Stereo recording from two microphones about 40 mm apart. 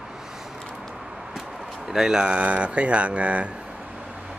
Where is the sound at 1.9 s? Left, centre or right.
Centre.